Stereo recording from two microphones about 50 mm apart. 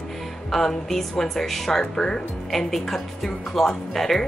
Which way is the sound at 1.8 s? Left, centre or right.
Centre.